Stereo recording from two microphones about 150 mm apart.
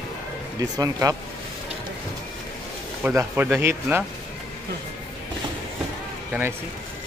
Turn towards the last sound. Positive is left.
turn(degrees=-15)  # may be behind; listen again after turning